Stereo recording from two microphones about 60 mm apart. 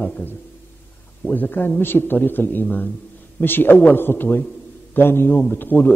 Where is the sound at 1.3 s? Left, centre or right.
Left.